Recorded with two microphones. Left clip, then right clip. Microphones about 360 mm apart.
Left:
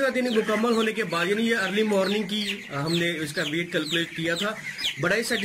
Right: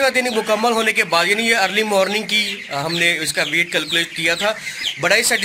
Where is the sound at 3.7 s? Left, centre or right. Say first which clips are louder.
Right 7 dB; centre.